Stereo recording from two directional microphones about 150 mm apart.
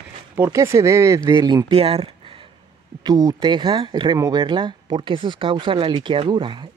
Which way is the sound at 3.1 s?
25° right (ahead or behind).